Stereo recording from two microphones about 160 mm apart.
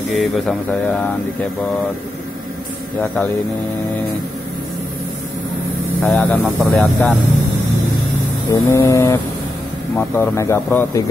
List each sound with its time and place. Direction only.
0.1 s speech: centre (ahead or behind)
6.0 s speech: 5° left (ahead or behind)
8.5 s foghorn: 20° left (ahead or behind)
9.9 s speech: 15° left (ahead or behind)